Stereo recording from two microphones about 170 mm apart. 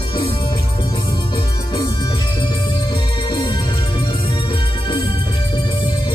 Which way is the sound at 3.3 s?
25° left (ahead or behind).